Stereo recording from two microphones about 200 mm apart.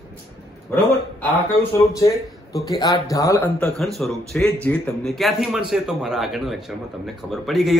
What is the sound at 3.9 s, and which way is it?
A man's voice, centre (ahead or behind).